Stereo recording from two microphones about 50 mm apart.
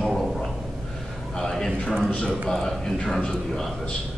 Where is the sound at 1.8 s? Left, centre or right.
Centre.